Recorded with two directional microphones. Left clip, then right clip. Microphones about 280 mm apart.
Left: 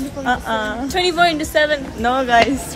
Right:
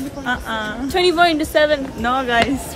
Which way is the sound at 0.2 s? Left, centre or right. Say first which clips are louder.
Left 3 dB; centre.